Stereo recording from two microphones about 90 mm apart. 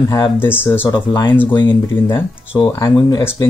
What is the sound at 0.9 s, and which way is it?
Speech, 55° left (ahead or behind).